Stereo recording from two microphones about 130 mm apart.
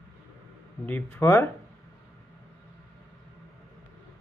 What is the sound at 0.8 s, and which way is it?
Speech, 15° left (ahead or behind).